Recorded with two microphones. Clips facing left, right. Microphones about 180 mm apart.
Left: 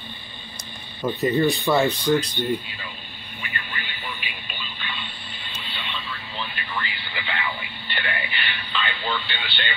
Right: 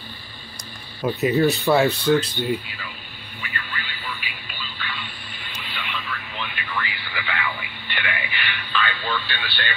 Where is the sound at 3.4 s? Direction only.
20° left (ahead or behind).